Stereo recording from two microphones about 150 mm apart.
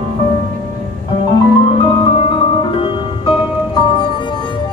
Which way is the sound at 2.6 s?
35° left (ahead or behind).